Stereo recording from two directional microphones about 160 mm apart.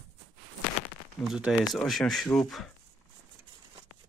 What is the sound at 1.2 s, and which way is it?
Speech, 5° right (ahead or behind).